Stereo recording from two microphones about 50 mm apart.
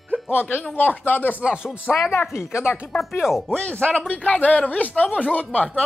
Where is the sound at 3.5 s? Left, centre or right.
Left.